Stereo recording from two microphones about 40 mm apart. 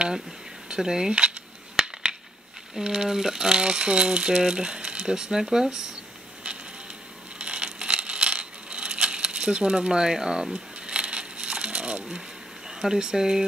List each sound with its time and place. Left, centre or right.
0.7 s speech: centre
1.8 s a sound: centre
2.8 s speech: centre
7.3 s coin: right
12.6 s speech: centre